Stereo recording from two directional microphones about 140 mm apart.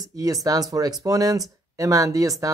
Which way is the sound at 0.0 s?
25° right (ahead or behind).